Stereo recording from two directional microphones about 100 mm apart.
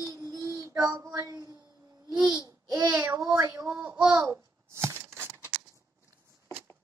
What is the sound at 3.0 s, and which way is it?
Speech, 40° right (ahead or behind).